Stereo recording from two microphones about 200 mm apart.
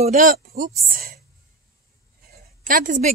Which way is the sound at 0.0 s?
45° right (ahead or behind).